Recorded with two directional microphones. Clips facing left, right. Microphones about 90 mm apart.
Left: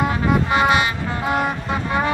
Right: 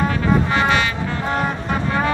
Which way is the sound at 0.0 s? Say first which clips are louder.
Right 1 dB; 15° left (ahead or behind).